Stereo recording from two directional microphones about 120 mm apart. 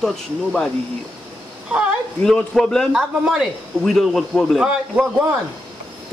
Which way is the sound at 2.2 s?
5° left (ahead or behind).